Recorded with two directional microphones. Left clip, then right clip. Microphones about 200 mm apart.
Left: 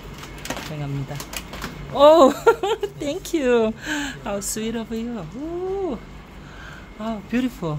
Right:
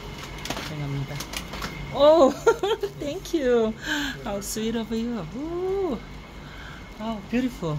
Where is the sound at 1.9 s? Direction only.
15° left (ahead or behind).